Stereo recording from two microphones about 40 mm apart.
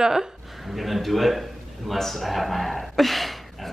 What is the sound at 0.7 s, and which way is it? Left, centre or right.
Speech, centre.